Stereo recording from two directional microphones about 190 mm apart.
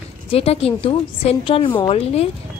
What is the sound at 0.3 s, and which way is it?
A woman's voice, 30° left (ahead or behind).